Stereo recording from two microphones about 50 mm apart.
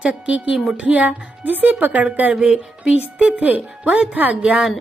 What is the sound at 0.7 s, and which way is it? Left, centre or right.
Speech, right.